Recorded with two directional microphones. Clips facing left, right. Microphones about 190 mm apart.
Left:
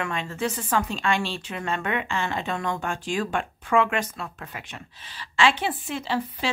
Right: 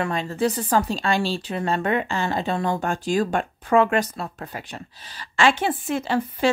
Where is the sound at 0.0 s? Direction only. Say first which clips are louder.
Right 5 dB; 35° right (ahead or behind).